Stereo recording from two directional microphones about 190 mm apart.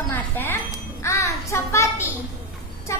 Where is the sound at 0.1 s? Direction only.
10° left (ahead or behind).